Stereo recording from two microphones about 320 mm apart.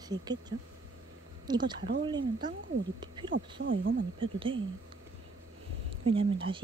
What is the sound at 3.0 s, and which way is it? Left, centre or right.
Speech, centre.